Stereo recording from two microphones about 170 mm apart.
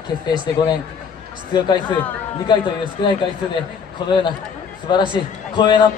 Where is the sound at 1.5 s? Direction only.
25° left (ahead or behind).